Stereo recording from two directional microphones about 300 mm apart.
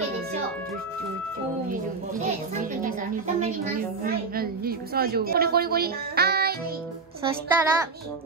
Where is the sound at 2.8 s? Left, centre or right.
Right.